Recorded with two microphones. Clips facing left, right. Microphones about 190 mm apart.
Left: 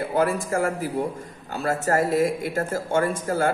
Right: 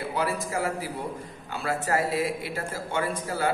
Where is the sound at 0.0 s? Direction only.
50° left (ahead or behind).